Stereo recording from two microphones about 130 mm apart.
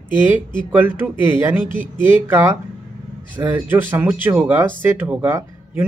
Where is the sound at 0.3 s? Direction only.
10° right (ahead or behind).